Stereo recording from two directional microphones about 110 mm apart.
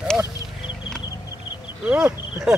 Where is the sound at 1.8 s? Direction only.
10° right (ahead or behind).